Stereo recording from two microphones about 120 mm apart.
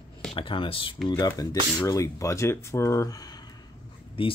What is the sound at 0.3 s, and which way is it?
Speech, 45° left (ahead or behind).